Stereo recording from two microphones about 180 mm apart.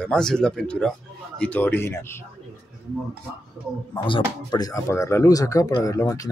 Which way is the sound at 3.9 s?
25° left (ahead or behind).